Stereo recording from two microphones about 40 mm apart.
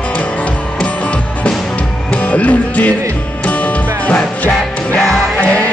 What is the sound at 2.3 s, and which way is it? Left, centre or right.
Music, left.